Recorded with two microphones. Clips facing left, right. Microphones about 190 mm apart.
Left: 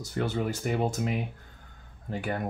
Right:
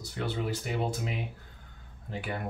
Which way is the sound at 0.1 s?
45° left (ahead or behind).